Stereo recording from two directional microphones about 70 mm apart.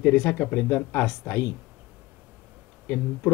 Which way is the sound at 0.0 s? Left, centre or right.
Left.